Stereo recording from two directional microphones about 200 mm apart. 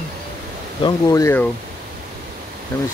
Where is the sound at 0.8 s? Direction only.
15° left (ahead or behind).